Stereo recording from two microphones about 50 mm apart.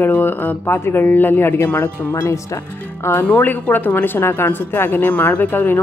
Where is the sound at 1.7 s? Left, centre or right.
Left.